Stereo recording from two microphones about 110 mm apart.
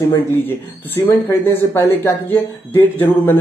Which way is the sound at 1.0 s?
20° left (ahead or behind).